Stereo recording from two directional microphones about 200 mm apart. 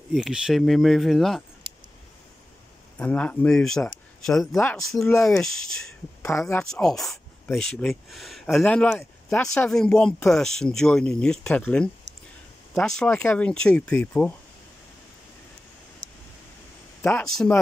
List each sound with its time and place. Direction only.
0.1 s speech: centre (ahead or behind)
3.0 s speech: 5° left (ahead or behind)
5.3 s speech: 5° left (ahead or behind)
6.3 s speech: 15° left (ahead or behind)
6.6 s speech: 5° left (ahead or behind)
17.0 s speech: 5° left (ahead or behind)